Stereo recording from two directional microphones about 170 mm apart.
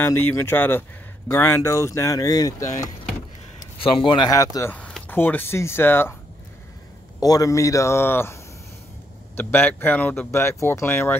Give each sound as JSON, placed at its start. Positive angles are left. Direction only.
{"t": 0.0, "sound": "speech", "side_deg": 15}
{"t": 4.7, "sound": "speech", "side_deg": 5}
{"t": 7.2, "sound": "speech", "side_deg": 20}
{"t": 9.4, "sound": "speech", "side_deg": 10}